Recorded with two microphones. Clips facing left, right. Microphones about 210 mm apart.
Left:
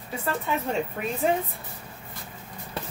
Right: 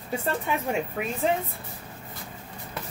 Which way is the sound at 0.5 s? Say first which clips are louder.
Left 1 dB; 15° right (ahead or behind).